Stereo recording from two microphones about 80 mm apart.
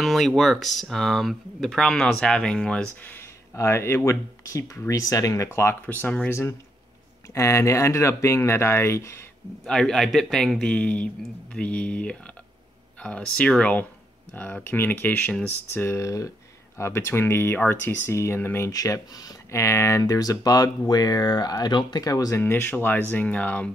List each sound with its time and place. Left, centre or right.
0.0 s speech: centre
3.5 s speech: left
4.8 s speech: left
9.7 s a man's voice: centre; by 16.0 s left
16.0 s speech: left
18.7 s speech: left
22.4 s speech: left